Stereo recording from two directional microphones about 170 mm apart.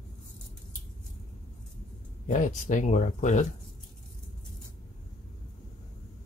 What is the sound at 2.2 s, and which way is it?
Speech, 45° left (ahead or behind).